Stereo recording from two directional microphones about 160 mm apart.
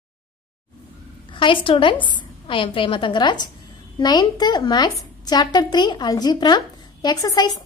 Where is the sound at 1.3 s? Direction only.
30° left (ahead or behind).